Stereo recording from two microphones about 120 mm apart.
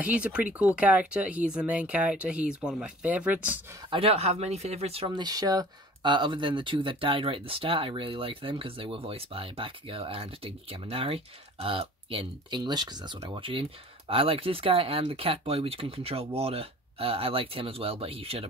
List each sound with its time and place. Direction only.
0.0 s speech: 10° right (ahead or behind)
3.9 s speech: 55° right (ahead or behind)
5.1 s speech: 35° right (ahead or behind); by 18.5 s 55° right (ahead or behind)